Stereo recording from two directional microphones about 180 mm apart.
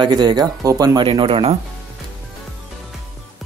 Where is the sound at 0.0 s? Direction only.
25° right (ahead or behind).